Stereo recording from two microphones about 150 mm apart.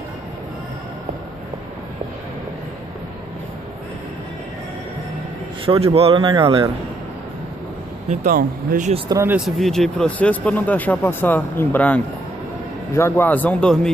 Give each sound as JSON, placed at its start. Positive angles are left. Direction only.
{"t": 5.7, "sound": "speech", "side_deg": -35}
{"t": 8.2, "sound": "speech", "side_deg": -80}
{"t": 9.2, "sound": "speech", "side_deg": -10}
{"t": 9.6, "sound": "speech", "side_deg": 5}